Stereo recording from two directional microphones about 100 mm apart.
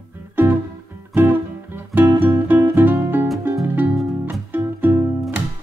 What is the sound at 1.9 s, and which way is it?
Music, 20° right (ahead or behind).